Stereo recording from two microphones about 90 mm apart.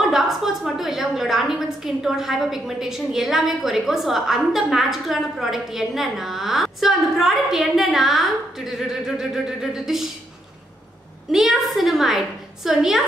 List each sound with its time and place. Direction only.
0.0 s a woman's voice: 5° right (ahead or behind)
11.3 s a woman's voice: centre (ahead or behind)